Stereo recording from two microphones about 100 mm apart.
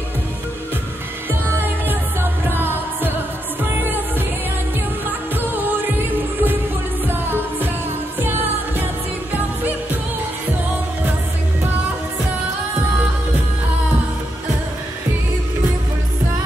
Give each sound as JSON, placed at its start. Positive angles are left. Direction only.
{"t": 2.5, "sound": "music", "side_deg": -20}
{"t": 5.3, "sound": "music", "side_deg": -20}
{"t": 8.2, "sound": "music", "side_deg": -20}